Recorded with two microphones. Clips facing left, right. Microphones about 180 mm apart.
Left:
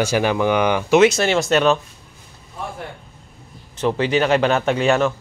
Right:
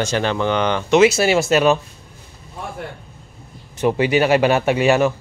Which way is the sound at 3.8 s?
10° right (ahead or behind).